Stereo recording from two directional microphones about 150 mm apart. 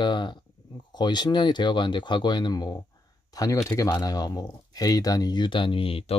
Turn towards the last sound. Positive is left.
turn(degrees=40)  # may be behind; listen again after turning